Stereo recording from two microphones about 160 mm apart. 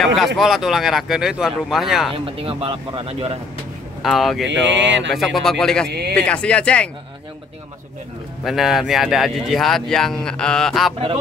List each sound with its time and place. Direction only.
0.0 s speech: centre (ahead or behind)
2.1 s speech: 35° right (ahead or behind)
4.0 s speech: centre (ahead or behind)
5.9 s speech: 90° right
6.1 s speech: 5° left (ahead or behind)
8.5 s speech: centre (ahead or behind)